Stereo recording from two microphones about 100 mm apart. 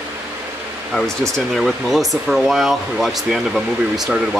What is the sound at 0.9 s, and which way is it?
Speech, 5° left (ahead or behind).